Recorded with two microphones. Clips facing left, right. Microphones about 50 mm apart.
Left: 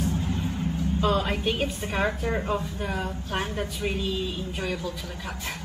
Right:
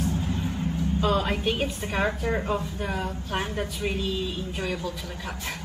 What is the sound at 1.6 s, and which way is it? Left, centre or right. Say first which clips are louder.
Speech: even; centre.